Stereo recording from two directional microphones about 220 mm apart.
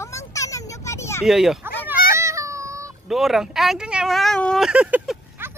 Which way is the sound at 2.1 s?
15° right (ahead or behind).